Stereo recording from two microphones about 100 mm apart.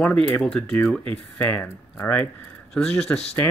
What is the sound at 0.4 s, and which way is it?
Speech, 10° left (ahead or behind).